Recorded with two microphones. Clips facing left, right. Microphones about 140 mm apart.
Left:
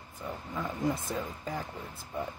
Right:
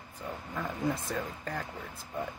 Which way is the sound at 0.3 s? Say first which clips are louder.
Left 1 dB; 10° left (ahead or behind).